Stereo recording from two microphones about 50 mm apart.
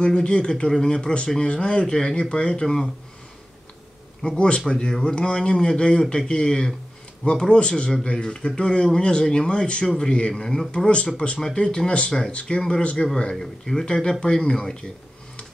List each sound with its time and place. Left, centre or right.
0.0 s speech: centre
4.2 s speech: centre